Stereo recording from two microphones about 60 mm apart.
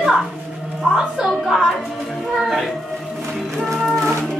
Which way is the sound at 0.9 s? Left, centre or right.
Centre.